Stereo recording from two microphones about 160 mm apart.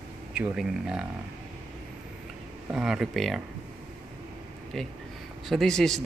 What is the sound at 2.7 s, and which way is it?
Speech, 5° right (ahead or behind).